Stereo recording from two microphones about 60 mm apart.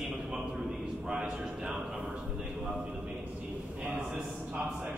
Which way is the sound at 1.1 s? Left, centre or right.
Centre.